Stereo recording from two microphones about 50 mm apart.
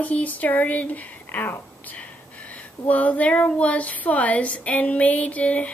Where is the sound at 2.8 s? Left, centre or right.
Left.